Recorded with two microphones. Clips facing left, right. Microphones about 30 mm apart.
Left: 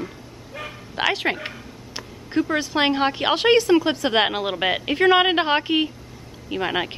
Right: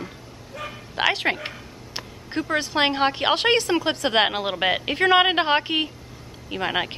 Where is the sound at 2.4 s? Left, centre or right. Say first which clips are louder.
Right 1 dB; centre.